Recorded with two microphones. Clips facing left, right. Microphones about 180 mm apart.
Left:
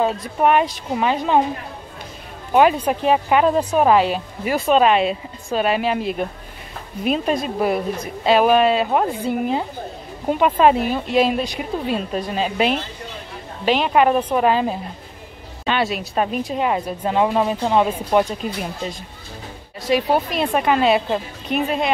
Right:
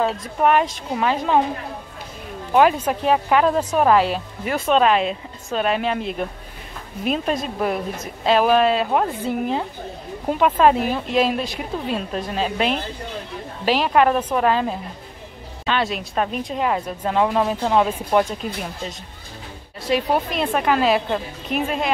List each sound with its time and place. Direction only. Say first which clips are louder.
0.4 s speech: left 1 dB; 5° left (ahead or behind)
2.5 s speech: left 1 dB; 5° left (ahead or behind)